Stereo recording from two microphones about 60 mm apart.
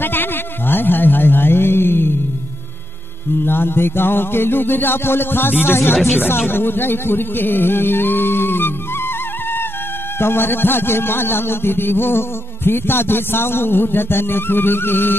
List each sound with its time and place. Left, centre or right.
0.0 s a sound: left
3.4 s a man's voice: left
10.1 s a man's voice: left